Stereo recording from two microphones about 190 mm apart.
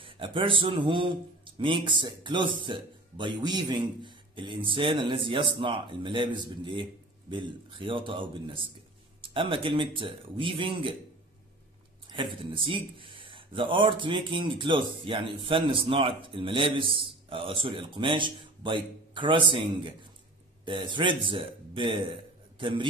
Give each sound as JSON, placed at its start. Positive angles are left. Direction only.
{"t": 0.0, "sound": "a man's voice", "side_deg": -25}
{"t": 12.1, "sound": "speech", "side_deg": -25}